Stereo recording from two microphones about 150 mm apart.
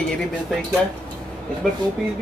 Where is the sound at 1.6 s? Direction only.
Centre (ahead or behind).